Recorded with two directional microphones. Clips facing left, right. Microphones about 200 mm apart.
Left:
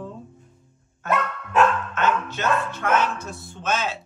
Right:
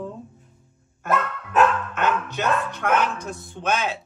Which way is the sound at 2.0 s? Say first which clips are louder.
Even; 15° right (ahead or behind).